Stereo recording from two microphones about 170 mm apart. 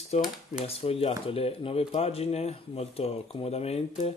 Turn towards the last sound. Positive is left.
turn(degrees=35)  # may be behind; listen again after turning